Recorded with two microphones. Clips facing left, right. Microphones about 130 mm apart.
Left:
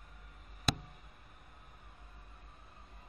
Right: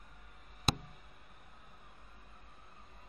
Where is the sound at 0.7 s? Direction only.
30° right (ahead or behind).